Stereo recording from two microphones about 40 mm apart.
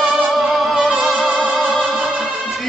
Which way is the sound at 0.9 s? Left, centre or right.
Right.